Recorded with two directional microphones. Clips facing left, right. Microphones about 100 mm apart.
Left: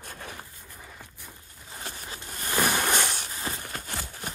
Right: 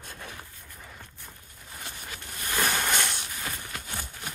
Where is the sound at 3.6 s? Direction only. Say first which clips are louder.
Left 2 dB; 50° left (ahead or behind).